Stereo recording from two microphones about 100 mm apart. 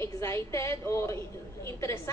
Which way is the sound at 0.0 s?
30° left (ahead or behind).